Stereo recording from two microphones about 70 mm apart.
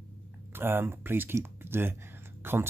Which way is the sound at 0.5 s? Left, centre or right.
Right.